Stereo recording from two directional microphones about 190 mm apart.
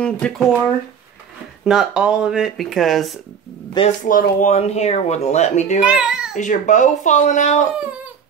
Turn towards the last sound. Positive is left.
turn(degrees=40)  # may be behind; listen again after turning